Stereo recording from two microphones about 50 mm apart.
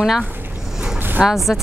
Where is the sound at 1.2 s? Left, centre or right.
Centre.